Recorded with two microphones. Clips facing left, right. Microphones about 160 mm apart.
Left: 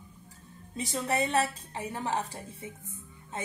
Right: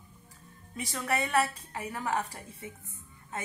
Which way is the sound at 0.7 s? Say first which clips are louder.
Left 2 dB; 25° left (ahead or behind).